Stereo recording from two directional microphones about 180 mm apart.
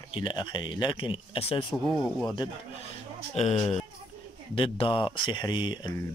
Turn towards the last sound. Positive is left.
turn(degrees=25)  # may be behind; listen again after turning